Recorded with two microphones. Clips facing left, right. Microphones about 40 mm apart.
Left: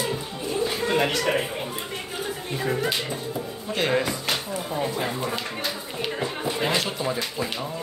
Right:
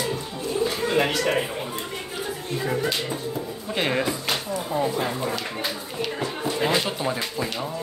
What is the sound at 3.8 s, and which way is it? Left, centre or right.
Speech, centre.